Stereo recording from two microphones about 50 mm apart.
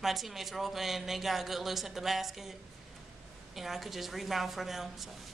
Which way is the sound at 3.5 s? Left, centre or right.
Centre.